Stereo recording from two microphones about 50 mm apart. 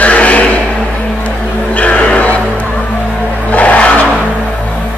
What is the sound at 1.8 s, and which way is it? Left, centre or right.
Music, left.